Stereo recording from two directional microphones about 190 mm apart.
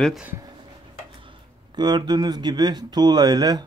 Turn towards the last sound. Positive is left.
turn(degrees=-20)  # may be behind; listen again after turning